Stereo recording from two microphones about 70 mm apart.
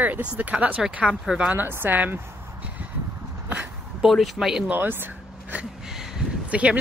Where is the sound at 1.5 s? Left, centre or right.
Right.